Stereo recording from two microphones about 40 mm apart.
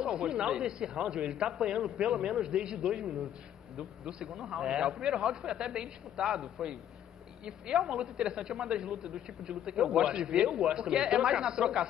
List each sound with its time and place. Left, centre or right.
0.0 s speech: centre
2.8 s a man's voice: centre
4.5 s speech: centre
5.0 s a man's voice: centre
8.8 s a man's voice: centre